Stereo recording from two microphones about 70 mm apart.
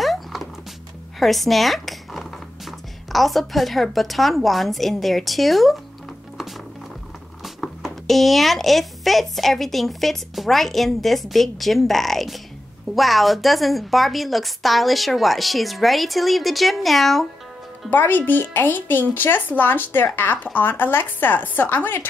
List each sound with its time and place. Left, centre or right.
0.0 s music: centre
1.2 s speech: centre
6.3 s music: centre
7.4 s speech: centre
17.8 s speech: left